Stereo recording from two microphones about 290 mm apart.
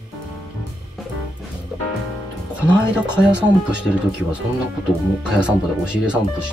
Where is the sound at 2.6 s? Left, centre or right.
Centre.